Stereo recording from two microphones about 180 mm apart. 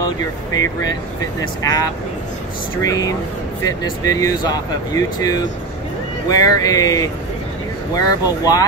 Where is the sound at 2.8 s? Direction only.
20° left (ahead or behind).